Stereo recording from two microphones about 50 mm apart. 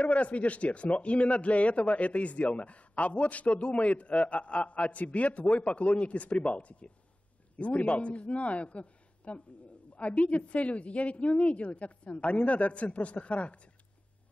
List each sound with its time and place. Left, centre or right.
0.0 s a man's voice: left